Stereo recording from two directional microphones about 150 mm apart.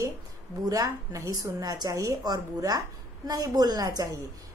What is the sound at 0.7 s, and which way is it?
A woman's voice, 25° right (ahead or behind).